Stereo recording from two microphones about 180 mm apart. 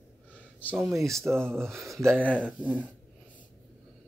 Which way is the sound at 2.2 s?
5° left (ahead or behind).